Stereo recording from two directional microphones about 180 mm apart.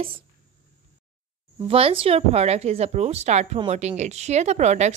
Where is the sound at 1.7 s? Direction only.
30° right (ahead or behind).